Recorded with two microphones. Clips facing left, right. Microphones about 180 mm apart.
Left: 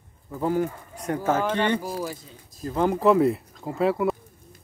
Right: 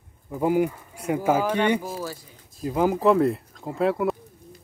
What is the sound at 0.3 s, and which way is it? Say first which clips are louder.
Speech: right 3 dB; 10° right (ahead or behind).